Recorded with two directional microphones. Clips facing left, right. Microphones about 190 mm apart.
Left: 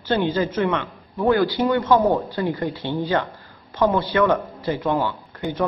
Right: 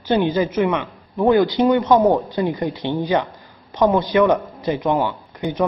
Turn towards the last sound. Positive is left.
turn(degrees=-15)  # may be behind; listen again after turning